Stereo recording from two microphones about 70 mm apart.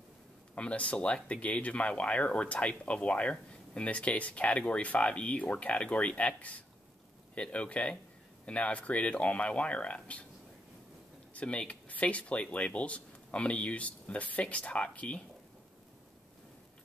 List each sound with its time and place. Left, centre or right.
0.6 s speech: centre
11.3 s speech: centre